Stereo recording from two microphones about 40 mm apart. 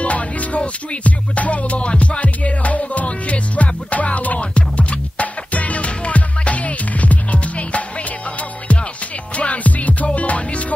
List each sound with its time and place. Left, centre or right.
0.0 s music: left
9.3 s music: left